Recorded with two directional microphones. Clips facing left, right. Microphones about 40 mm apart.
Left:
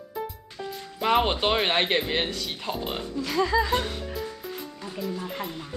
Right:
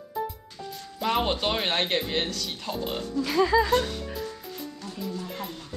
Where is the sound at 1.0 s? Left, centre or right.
Centre.